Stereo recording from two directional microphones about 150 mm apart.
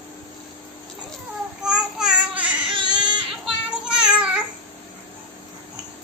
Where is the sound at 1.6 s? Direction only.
5° right (ahead or behind).